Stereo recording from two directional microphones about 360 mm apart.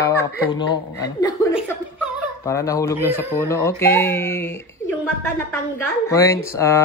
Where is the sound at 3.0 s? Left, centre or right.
Centre.